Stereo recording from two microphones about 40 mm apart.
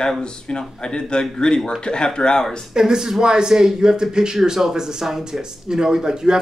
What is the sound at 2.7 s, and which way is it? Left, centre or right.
A man's voice, centre.